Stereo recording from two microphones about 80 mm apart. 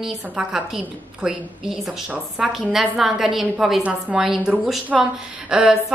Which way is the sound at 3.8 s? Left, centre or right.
Centre.